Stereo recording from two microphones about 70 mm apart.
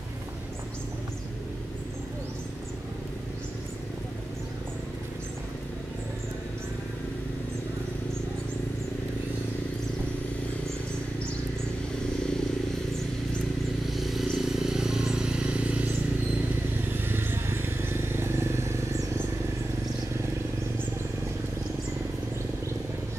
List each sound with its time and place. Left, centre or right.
13.9 s vehicle: centre
16.9 s vehicle: right